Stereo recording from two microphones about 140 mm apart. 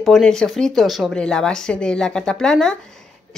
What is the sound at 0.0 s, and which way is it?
Speech, centre (ahead or behind).